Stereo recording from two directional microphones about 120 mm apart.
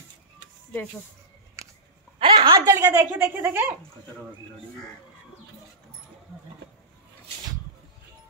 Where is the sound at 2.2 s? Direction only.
35° right (ahead or behind); by 3.7 s 20° right (ahead or behind).